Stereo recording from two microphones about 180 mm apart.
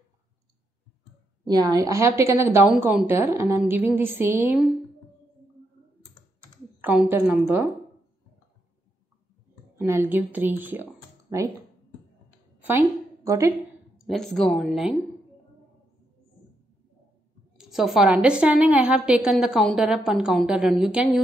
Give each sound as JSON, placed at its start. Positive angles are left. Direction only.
{"t": 1.4, "sound": "a woman's voice", "side_deg": -20}
{"t": 6.8, "sound": "a woman's voice", "side_deg": -10}
{"t": 9.8, "sound": "speech", "side_deg": -10}
{"t": 12.6, "sound": "a woman's voice", "side_deg": -15}
{"t": 13.9, "sound": "a woman's voice", "side_deg": 0}
{"t": 17.6, "sound": "a woman's voice", "side_deg": 0}